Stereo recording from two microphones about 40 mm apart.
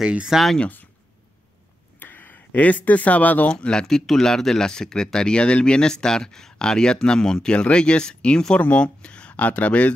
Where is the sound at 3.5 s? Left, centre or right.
Left.